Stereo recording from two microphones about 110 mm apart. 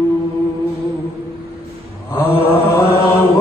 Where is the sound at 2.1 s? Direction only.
25° left (ahead or behind).